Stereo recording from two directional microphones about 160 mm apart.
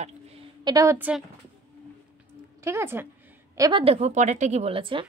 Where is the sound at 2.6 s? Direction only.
15° right (ahead or behind).